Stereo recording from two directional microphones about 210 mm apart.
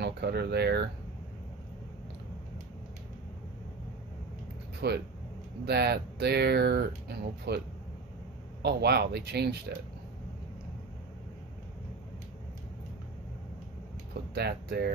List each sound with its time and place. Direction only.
0.0 s speech: 50° right (ahead or behind)
4.8 s speech: 50° right (ahead or behind)
8.6 s speech: 50° right (ahead or behind)
14.3 s speech: 50° right (ahead or behind)